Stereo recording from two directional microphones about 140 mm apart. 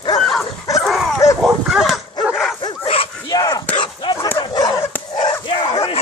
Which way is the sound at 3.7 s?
35° left (ahead or behind).